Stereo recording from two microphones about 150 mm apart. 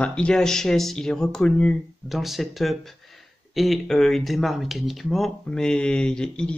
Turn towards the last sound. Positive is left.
turn(degrees=5)  # may be behind; listen again after turning